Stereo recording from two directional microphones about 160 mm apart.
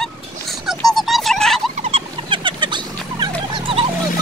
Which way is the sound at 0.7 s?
Centre (ahead or behind).